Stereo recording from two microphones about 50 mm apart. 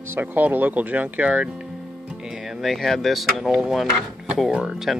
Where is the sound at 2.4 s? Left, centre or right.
Centre.